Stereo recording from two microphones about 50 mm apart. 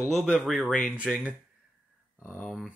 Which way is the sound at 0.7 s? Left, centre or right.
Centre.